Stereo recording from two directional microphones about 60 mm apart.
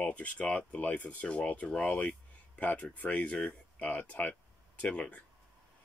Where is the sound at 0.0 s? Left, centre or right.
Left.